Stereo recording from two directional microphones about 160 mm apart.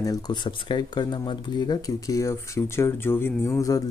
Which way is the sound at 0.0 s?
25° left (ahead or behind).